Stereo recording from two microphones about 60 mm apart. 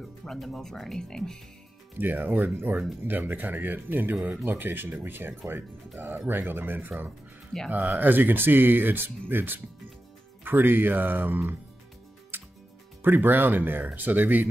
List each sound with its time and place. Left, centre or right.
0.2 s speech: centre
2.0 s speech: right
7.5 s speech: centre
8.0 s speech: right
12.3 s music: right
13.0 s speech: right